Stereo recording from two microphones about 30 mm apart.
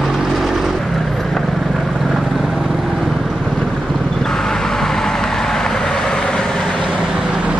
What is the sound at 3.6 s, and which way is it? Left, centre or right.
Boat, centre.